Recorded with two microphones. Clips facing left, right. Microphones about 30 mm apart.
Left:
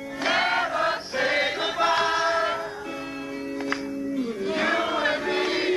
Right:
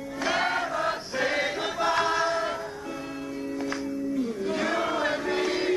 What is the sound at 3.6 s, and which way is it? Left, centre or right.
Music, left.